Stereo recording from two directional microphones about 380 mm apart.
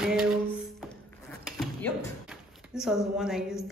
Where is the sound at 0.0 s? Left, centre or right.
Centre.